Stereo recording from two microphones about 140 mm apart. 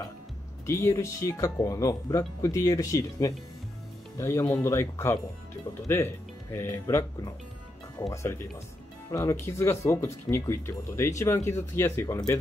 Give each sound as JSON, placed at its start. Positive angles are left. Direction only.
{"t": 0.7, "sound": "speech", "side_deg": 20}